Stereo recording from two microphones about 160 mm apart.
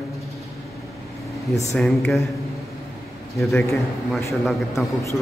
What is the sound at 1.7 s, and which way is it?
Speech, centre (ahead or behind).